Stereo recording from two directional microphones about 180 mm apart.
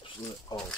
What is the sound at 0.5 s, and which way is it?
Speech, 25° left (ahead or behind).